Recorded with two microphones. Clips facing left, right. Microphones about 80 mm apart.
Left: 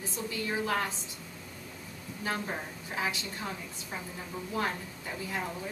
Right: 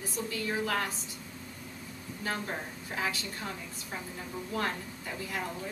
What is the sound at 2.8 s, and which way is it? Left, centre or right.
A woman's voice, centre.